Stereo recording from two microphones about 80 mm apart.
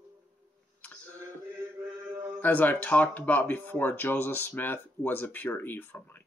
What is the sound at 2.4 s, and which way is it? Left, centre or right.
Speech, left.